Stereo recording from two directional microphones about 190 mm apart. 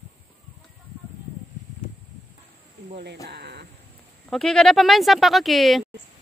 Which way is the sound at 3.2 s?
65° right (ahead or behind).